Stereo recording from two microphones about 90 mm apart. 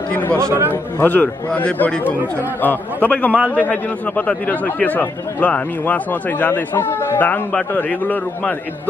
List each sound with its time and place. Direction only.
0.4 s a man's voice: 30° right (ahead or behind)
0.9 s a man's voice: 20° left (ahead or behind)
3.3 s a man's voice: 15° right (ahead or behind)
4.3 s a man's voice: 15° left (ahead or behind)